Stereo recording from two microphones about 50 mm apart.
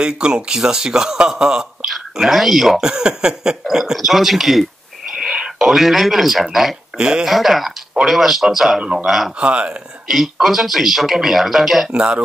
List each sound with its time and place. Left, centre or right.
0.0 s a man's voice: centre
2.9 s a man's voice: centre
5.2 s whispering: centre
5.7 s speech: centre
7.0 s a man's voice: centre
7.2 s speech: centre
9.4 s speech: right
10.0 s speech: centre
11.9 s speech: right